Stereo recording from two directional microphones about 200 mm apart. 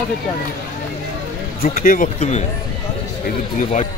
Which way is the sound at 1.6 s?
45° left (ahead or behind).